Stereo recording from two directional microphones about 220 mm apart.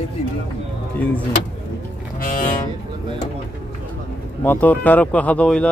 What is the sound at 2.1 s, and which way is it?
Music, 40° left (ahead or behind).